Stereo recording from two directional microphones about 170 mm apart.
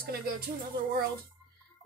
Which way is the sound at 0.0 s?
60° right (ahead or behind).